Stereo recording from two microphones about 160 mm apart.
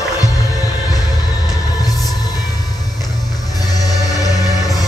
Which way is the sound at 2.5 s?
25° left (ahead or behind).